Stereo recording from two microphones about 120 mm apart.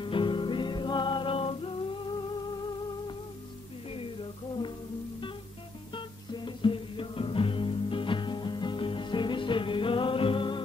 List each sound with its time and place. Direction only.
0.0 s music: 45° left (ahead or behind)
3.9 s a sound: 45° left (ahead or behind)
5.9 s music: 40° left (ahead or behind)